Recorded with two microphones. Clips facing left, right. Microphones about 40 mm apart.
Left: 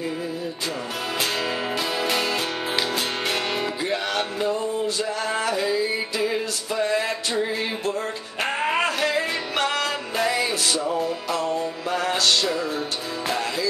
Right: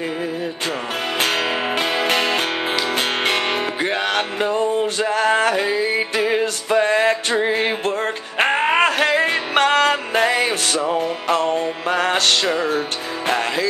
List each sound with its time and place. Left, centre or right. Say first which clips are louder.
1.2 s music: right 6 dB; right